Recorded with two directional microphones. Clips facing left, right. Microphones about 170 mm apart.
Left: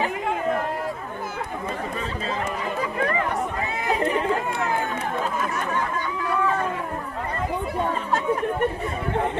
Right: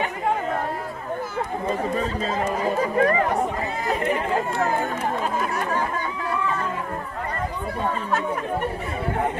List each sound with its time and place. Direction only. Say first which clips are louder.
2.6 s chatter: right 8 dB; 40° right (ahead or behind)